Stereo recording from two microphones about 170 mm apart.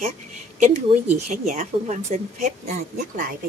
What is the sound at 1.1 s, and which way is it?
Speech, 50° right (ahead or behind).